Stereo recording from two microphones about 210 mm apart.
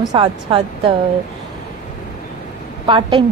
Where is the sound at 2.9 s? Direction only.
25° right (ahead or behind).